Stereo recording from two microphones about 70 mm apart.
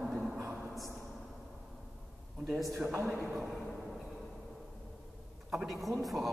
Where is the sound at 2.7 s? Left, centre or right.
Right.